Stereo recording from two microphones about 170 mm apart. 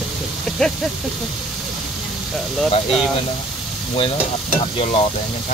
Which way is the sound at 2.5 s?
Centre (ahead or behind).